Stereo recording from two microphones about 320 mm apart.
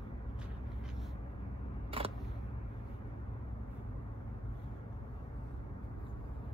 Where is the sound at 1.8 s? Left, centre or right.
Centre.